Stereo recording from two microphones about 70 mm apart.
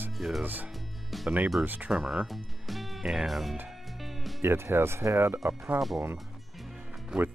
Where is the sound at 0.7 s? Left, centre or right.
Centre.